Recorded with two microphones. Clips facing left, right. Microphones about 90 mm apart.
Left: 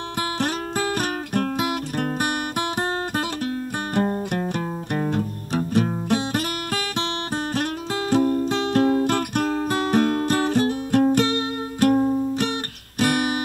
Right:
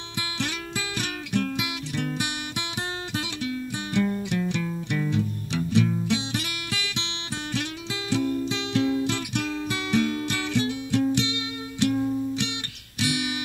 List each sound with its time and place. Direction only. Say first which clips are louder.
0.4 s music: left 6 dB; 45° left (ahead or behind)
8.1 s music: left 6 dB; 45° left (ahead or behind)
13.0 s guitar: left 7 dB; 45° left (ahead or behind)